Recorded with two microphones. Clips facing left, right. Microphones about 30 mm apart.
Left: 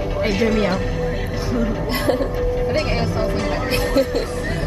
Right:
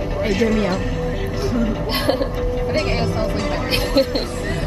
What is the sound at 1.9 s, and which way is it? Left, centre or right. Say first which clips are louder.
Speech: left 1 dB; right.